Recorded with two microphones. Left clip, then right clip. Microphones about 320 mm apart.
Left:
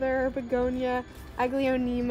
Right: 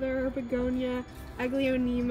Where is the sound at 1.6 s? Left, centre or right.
Centre.